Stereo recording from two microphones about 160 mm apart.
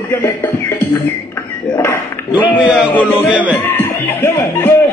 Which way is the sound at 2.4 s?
30° left (ahead or behind).